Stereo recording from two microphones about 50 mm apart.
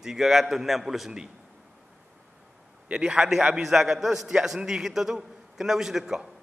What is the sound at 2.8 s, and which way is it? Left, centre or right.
Speech, right.